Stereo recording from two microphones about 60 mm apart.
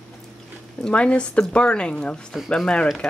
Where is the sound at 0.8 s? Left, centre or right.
Centre.